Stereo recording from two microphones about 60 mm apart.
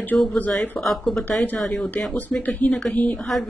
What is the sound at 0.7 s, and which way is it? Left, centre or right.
Speech, centre.